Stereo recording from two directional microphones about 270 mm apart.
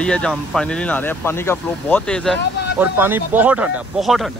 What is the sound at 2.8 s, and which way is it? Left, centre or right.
Speech, centre.